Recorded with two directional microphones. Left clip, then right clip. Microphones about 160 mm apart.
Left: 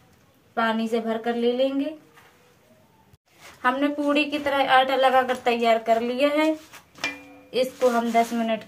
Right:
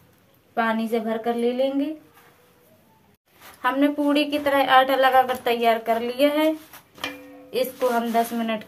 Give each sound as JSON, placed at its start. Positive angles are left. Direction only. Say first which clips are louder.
{"t": 0.6, "sound": "a woman's voice", "louder": "right 1 dB", "side_deg": -20}
{"t": 3.6, "sound": "a woman's voice", "louder": "right 1 dB", "side_deg": -25}
{"t": 7.5, "sound": "a woman's voice", "louder": "left 1 dB", "side_deg": -20}